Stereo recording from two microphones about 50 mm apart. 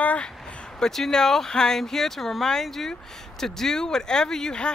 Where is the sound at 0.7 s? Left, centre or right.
Centre.